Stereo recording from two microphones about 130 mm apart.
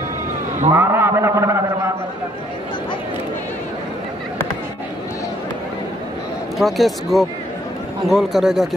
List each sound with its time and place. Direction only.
0.7 s a man's voice: 20° right (ahead or behind)
6.6 s speech: centre (ahead or behind)